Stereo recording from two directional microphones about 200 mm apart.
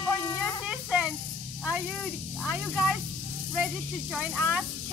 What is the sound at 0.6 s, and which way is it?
Snake, 5° right (ahead or behind).